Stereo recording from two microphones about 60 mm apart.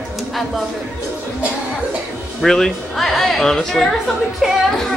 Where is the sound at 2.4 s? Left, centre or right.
Centre.